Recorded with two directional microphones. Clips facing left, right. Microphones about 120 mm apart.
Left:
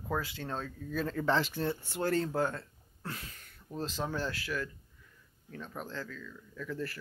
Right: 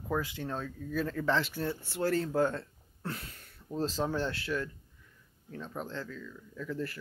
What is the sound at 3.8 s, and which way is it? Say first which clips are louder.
Speech: right 4 dB; 35° right (ahead or behind).